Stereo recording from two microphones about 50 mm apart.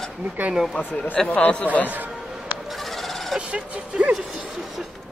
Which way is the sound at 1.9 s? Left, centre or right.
Right.